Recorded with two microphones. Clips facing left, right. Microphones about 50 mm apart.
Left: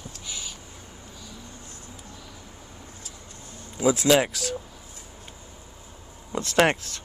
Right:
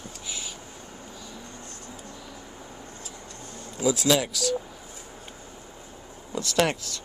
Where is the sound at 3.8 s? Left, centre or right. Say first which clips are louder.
Left 3 dB; left.